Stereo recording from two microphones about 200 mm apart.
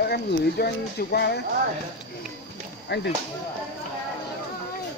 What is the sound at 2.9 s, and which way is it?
Speech, 60° left (ahead or behind).